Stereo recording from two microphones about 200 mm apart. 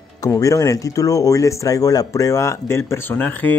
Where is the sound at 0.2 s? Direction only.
15° left (ahead or behind).